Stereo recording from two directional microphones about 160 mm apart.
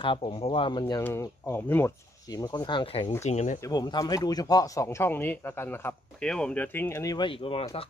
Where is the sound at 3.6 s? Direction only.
25° left (ahead or behind).